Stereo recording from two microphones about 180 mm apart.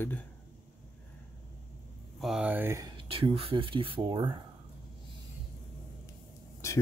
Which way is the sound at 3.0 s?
30° right (ahead or behind).